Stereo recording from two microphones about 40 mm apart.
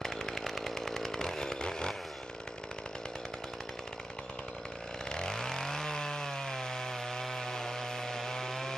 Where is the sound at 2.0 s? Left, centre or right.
Centre.